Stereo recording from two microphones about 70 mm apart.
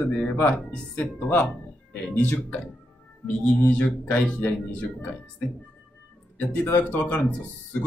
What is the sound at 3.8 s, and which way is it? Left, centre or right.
Speech, centre.